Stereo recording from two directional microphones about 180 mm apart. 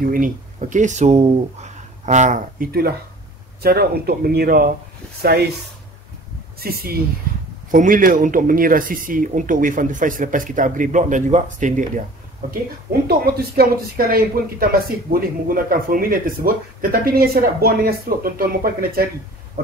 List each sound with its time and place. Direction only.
0.1 s speech: 45° right (ahead or behind)
3.6 s speech: 60° right (ahead or behind)
6.6 s speech: 55° right (ahead or behind)
13.2 s speech: 55° right (ahead or behind)